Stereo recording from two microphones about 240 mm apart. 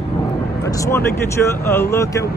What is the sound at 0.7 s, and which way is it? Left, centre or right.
Speech, centre.